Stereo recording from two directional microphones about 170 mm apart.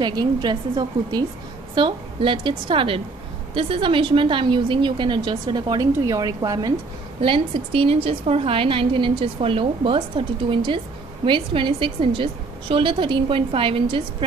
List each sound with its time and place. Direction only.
0.0 s a woman's voice: 25° right (ahead or behind)
7.2 s a woman's voice: 30° right (ahead or behind)